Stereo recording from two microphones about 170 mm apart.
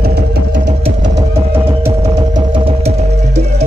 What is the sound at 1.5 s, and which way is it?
Music, 15° right (ahead or behind).